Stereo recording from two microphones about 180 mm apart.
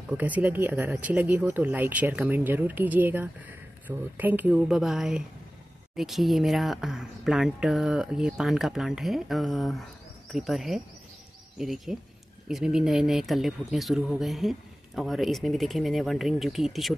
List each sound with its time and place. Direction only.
0.2 s speech: 10° right (ahead or behind)